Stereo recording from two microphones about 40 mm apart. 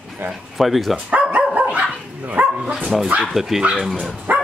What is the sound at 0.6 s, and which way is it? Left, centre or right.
Speech, centre.